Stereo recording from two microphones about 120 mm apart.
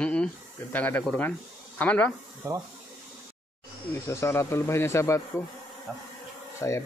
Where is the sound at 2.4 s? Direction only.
25° right (ahead or behind).